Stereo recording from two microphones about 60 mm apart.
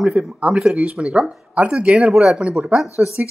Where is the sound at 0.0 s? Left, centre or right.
Centre.